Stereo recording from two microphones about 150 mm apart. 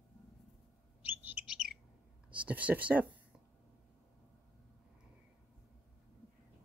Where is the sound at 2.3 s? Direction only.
10° right (ahead or behind).